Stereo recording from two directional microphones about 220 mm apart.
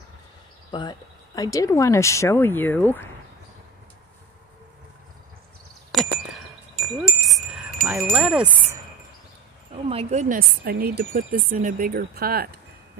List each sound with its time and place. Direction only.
0.7 s speech: 20° left (ahead or behind)
5.9 s a sound: centre (ahead or behind)
6.7 s wind chime: centre (ahead or behind)
9.8 s speech: 30° right (ahead or behind); by 12.5 s 45° right (ahead or behind)